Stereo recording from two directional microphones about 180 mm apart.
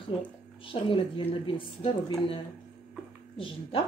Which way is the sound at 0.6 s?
30° left (ahead or behind).